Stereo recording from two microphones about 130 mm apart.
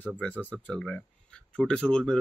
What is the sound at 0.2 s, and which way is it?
Speech, 10° left (ahead or behind).